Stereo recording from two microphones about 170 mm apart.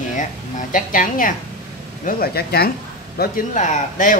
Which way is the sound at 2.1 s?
65° left (ahead or behind).